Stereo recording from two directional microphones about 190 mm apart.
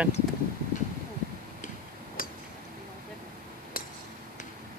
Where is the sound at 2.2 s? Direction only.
45° left (ahead or behind).